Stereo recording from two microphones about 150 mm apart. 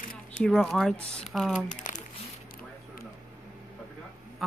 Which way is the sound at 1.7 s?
60° left (ahead or behind).